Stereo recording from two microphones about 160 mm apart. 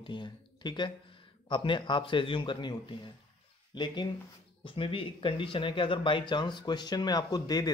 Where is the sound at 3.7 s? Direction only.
30° left (ahead or behind).